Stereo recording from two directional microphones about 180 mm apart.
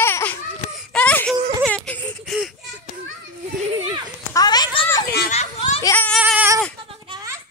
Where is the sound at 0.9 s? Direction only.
10° left (ahead or behind).